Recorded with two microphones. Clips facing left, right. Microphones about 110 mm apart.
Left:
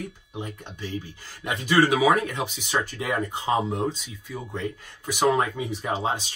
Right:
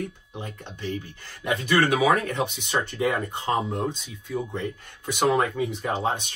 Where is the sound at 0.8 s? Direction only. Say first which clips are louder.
Right 2 dB; 60° right (ahead or behind).